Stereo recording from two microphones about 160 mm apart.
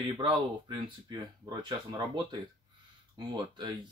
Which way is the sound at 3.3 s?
30° right (ahead or behind).